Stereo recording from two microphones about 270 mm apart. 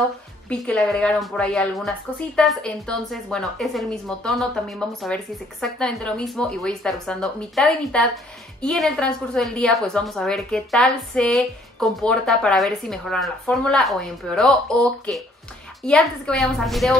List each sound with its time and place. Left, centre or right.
0.5 s a woman's voice: centre
15.8 s a woman's voice: centre